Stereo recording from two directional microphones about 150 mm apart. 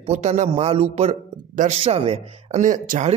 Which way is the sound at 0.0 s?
50° right (ahead or behind).